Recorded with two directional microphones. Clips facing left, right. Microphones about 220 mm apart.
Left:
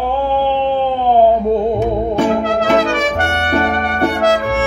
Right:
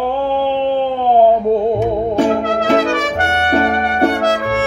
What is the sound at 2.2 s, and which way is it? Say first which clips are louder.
Music: even; 35° right (ahead or behind).